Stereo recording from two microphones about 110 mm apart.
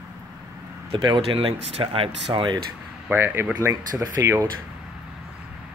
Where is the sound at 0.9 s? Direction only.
55° right (ahead or behind).